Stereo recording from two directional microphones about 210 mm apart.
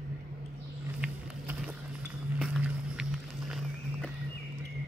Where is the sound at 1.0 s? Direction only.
5° right (ahead or behind).